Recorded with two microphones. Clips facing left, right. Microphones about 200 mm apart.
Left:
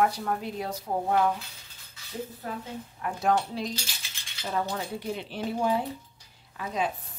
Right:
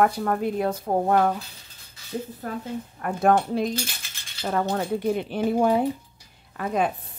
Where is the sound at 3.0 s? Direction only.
55° right (ahead or behind).